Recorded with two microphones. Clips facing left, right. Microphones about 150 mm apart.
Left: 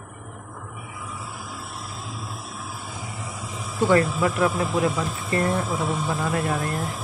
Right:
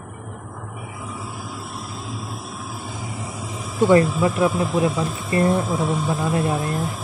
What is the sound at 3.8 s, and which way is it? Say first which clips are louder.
Speech: right 4 dB; 20° right (ahead or behind).